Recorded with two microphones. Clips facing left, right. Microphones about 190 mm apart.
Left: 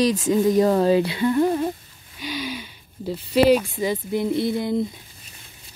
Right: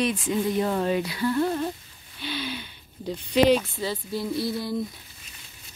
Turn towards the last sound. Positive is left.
turn(degrees=20)  # may be behind; listen again after turning